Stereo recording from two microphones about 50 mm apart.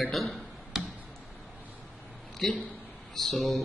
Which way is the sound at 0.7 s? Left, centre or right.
Centre.